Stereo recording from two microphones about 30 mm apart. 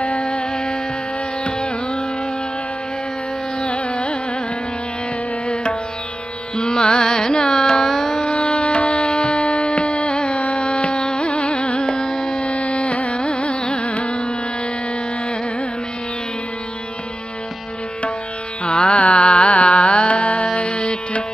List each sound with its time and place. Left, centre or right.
0.2 s music: left
1.4 s carnatic music: left
3.6 s carnatic music: left
5.5 s music: left
6.5 s carnatic music: left
7.8 s carnatic music: centre
8.3 s music: left
11.8 s carnatic music: left
12.4 s carnatic music: left
18.6 s carnatic music: left
20.5 s music: left